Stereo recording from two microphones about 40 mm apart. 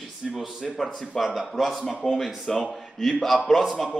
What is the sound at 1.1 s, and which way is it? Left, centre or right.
Speech, centre.